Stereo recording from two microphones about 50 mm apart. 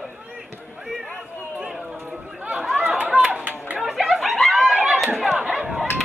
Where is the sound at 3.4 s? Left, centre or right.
Right.